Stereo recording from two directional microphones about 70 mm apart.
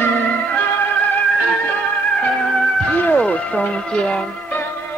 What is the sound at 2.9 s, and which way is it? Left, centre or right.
Music, left.